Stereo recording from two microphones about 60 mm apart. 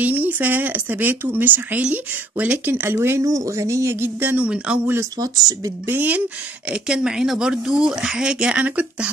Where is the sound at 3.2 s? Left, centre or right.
Right.